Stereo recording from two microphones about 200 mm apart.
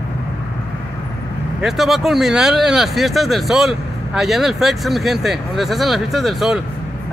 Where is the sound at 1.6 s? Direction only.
Centre (ahead or behind).